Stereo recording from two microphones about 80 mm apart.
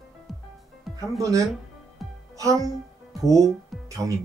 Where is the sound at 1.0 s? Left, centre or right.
Right.